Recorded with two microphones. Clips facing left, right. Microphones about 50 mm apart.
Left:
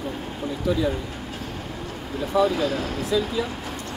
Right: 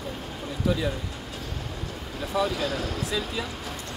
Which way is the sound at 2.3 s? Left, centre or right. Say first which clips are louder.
Left 5 dB; left.